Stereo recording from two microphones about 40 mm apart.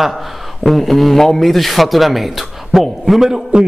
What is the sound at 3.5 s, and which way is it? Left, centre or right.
Music, right.